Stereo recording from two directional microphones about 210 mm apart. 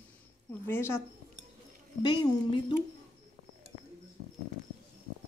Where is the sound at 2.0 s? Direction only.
20° left (ahead or behind).